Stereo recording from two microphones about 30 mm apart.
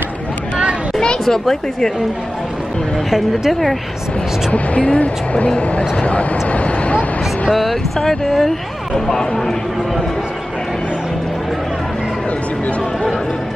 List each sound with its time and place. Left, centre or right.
3.1 s a woman's voice: centre
4.5 s speech: left
8.0 s speech: centre